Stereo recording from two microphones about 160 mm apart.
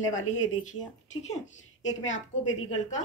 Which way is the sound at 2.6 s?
45° left (ahead or behind).